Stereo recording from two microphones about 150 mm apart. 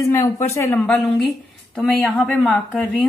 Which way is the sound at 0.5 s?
20° left (ahead or behind).